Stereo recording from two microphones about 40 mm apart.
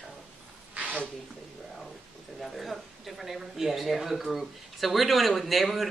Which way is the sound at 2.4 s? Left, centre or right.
Centre.